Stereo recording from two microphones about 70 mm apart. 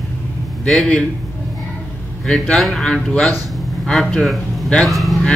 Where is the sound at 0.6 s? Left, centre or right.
Centre.